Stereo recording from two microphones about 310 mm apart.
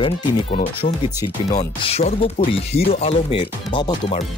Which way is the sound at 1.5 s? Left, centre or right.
Centre.